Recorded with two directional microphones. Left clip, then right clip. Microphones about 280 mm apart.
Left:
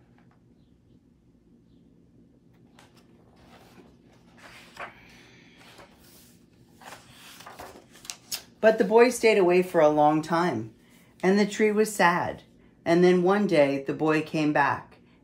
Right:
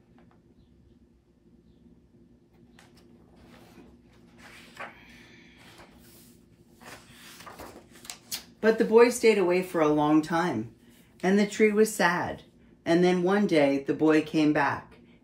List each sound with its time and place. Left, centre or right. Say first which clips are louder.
5.2 s music: right 1 dB; centre
6.8 s a sound: left 1 dB; centre
9.9 s speech: left 2 dB; centre